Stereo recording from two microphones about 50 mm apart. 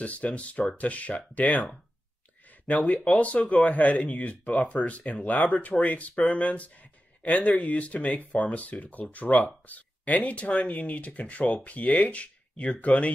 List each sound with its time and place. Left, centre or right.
0.0 s speech: left
2.9 s speech: left